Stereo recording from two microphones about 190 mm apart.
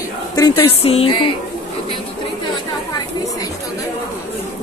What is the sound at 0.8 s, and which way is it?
Speech, 30° left (ahead or behind).